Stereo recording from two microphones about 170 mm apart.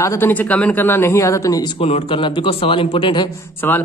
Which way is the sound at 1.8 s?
35° left (ahead or behind).